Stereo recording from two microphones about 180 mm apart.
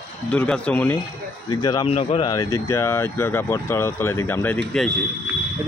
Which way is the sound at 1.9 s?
35° left (ahead or behind).